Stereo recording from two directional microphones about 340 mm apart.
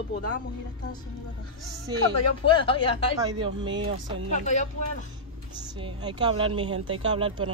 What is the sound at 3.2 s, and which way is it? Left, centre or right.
Speech, centre.